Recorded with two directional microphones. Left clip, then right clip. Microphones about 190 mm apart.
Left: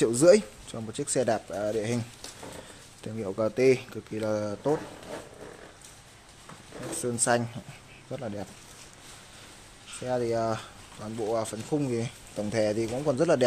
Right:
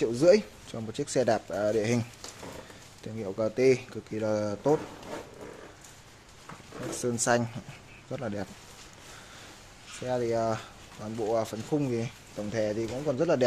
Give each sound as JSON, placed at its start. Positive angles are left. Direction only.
{"t": 0.2, "sound": "speech", "side_deg": 15}
{"t": 0.7, "sound": "speech", "side_deg": 0}
{"t": 3.0, "sound": "speech", "side_deg": 15}
{"t": 7.0, "sound": "speech", "side_deg": 0}
{"t": 10.0, "sound": "speech", "side_deg": 10}
{"t": 12.4, "sound": "speech", "side_deg": 20}